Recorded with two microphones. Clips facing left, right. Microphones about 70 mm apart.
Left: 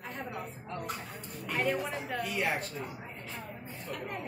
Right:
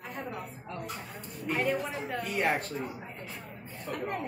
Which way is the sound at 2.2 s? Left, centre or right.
Right.